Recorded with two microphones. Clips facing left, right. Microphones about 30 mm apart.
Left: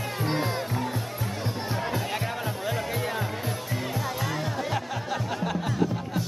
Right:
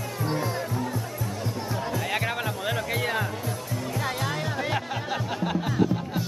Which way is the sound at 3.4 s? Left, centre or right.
Left.